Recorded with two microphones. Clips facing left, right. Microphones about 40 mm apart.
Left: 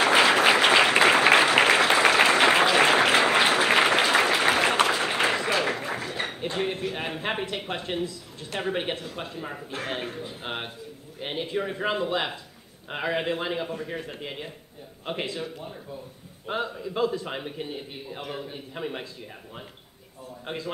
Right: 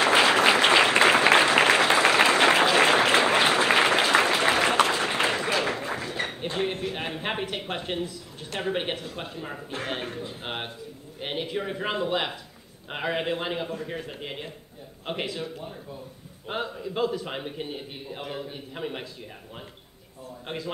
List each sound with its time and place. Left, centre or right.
0.0 s applause: centre
8.5 s a man's voice: centre
20.4 s a man's voice: centre